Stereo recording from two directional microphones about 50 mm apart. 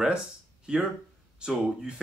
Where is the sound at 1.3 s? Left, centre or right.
Centre.